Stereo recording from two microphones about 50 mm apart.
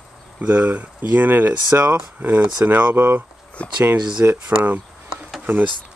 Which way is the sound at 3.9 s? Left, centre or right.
Right.